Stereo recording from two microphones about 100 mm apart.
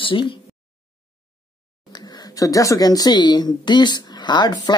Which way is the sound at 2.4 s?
35° left (ahead or behind).